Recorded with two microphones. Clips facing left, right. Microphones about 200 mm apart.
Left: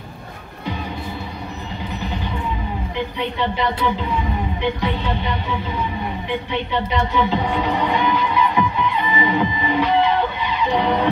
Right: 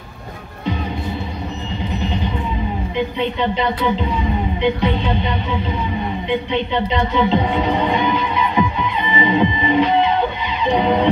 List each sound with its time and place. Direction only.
3.3 s music: 20° right (ahead or behind)
6.5 s speech: 20° right (ahead or behind)
10.7 s music: 20° right (ahead or behind)